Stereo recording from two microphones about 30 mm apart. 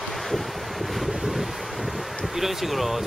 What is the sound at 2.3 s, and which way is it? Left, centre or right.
Speech, centre.